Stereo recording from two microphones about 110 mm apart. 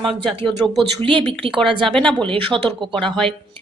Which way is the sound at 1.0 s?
55° right (ahead or behind).